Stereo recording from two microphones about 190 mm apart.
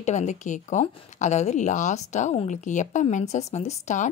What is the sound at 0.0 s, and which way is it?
A woman's voice, 35° left (ahead or behind).